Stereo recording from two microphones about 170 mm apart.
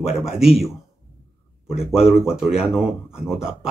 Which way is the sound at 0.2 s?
Centre (ahead or behind).